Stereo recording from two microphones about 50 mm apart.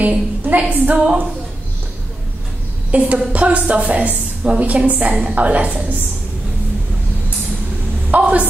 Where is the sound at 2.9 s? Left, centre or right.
Right.